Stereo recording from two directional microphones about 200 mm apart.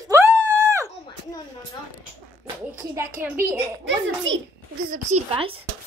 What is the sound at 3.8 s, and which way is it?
Speech, 70° right (ahead or behind).